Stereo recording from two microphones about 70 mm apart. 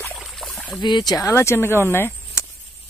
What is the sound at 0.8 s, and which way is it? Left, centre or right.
Speech, left.